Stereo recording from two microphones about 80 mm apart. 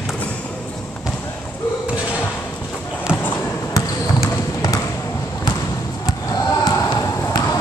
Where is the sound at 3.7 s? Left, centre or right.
Left.